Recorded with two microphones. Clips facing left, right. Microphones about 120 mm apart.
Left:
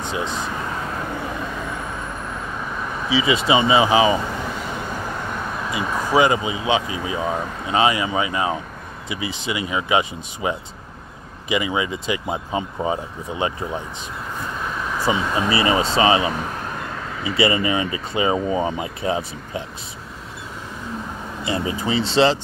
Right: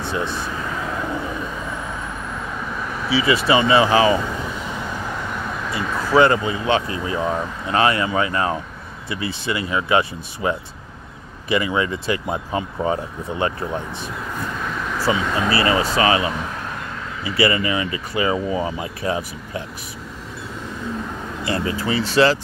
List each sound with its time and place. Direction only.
0.0 s speech: 15° left (ahead or behind)
3.1 s speech: 20° left (ahead or behind)
5.7 s speech: 15° left (ahead or behind)
15.0 s speech: 20° left (ahead or behind)
21.5 s speech: 20° left (ahead or behind)